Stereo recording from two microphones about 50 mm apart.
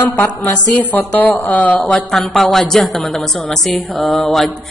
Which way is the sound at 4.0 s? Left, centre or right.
Centre.